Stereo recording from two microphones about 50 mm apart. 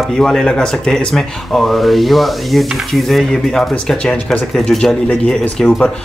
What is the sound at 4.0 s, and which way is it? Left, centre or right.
Speech, centre.